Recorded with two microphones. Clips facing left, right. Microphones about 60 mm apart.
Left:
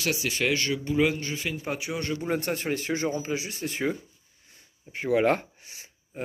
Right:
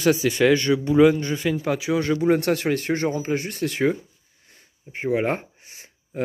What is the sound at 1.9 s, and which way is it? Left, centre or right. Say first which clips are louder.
Speech: right 12 dB; right.